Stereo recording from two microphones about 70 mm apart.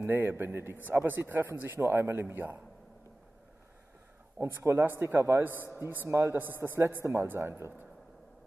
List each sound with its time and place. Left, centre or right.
0.0 s a man's voice: right
4.4 s a man's voice: right
5.5 s a man's voice: left
6.0 s a man's voice: right
6.3 s a man's voice: right